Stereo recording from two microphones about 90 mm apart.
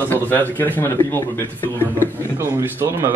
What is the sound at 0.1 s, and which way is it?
Speech, 20° left (ahead or behind).